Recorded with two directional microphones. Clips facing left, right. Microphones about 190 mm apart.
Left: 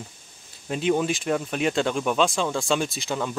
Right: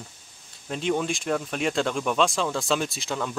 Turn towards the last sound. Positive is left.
turn(degrees=0)  # may be behind; listen again after turning